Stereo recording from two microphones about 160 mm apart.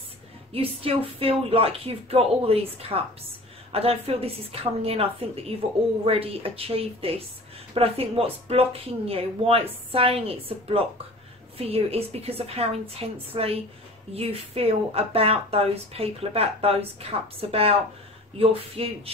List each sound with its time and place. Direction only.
0.5 s speech: 35° right (ahead or behind)